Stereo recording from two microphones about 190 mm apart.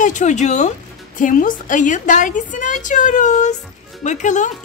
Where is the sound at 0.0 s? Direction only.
40° left (ahead or behind).